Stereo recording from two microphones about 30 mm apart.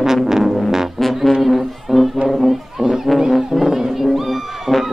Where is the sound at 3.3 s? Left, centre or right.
Centre.